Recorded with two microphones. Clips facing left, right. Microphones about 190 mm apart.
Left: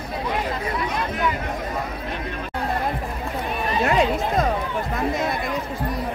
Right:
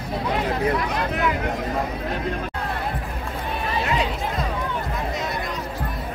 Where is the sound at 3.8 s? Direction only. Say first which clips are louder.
Left 5 dB; 50° left (ahead or behind).